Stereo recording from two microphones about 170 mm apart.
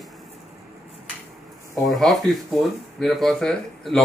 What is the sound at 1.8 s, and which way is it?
Speech, centre (ahead or behind).